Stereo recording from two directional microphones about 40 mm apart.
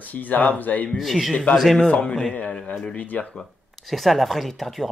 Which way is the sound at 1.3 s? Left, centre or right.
Left.